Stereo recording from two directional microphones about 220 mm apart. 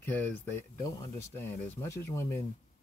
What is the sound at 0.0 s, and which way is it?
Speech, 10° left (ahead or behind).